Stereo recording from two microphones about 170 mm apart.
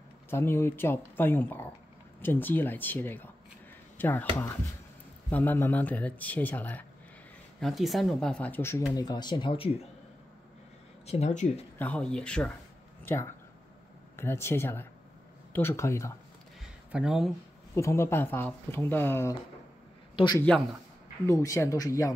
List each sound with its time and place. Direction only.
0.3 s speech: 15° left (ahead or behind)
5.3 s speech: 10° left (ahead or behind)
7.6 s speech: centre (ahead or behind)
8.9 s speech: 25° left (ahead or behind)
11.1 s speech: 40° left (ahead or behind)
11.8 s speech: 5° left (ahead or behind)
16.9 s speech: 5° right (ahead or behind)
17.7 s a man's voice: 15° left (ahead or behind)